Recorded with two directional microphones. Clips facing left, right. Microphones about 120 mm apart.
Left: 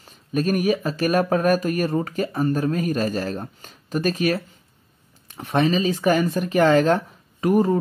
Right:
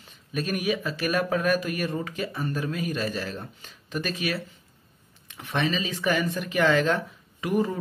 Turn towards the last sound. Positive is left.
turn(degrees=40)  # may be behind; listen again after turning